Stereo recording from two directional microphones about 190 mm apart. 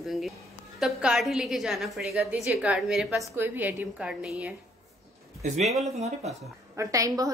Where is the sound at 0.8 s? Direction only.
5° right (ahead or behind).